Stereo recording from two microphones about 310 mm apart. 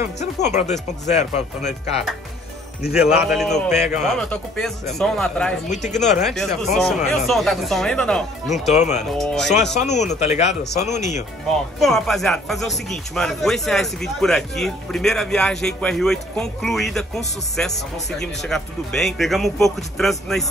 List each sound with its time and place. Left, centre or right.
0.0 s speech: left
2.9 s speech: centre
5.7 s speech: left
6.2 s speech: centre
8.7 s speech: left
9.2 s speech: centre
9.8 s speech: left
11.8 s speech: centre